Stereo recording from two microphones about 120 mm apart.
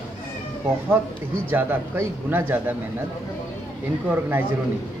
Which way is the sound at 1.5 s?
15° right (ahead or behind).